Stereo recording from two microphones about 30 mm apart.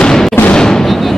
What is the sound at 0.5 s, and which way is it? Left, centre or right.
Fireworks, left.